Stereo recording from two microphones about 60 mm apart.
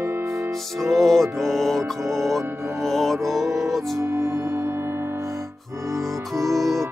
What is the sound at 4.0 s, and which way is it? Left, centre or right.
Music, right.